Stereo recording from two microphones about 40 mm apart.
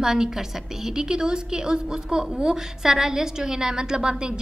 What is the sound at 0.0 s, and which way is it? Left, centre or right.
A woman's voice, centre.